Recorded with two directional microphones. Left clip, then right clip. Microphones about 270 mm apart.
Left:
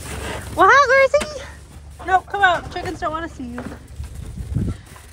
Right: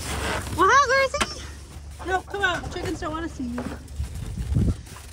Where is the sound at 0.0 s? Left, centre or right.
Centre; by 3.2 s right.